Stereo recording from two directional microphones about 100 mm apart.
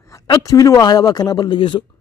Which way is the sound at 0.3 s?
35° left (ahead or behind).